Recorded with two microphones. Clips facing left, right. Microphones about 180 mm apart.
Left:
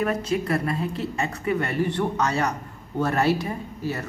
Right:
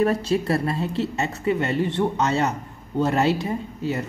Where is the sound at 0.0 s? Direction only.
30° right (ahead or behind).